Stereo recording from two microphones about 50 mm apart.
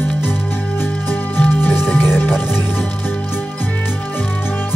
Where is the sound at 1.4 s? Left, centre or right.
Left.